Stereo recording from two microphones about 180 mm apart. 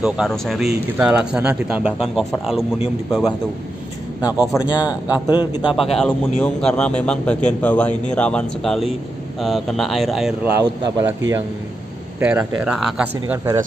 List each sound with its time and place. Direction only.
0.0 s speech: centre (ahead or behind)
4.6 s a man's voice: 25° left (ahead or behind)
5.8 s a man's voice: 5° left (ahead or behind)
10.6 s speech: 20° right (ahead or behind); by 13.1 s centre (ahead or behind)